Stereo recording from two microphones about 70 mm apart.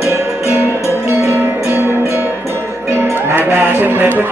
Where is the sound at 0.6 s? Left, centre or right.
Left.